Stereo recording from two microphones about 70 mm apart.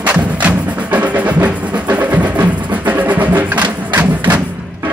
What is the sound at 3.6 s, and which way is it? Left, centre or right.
Thump, right.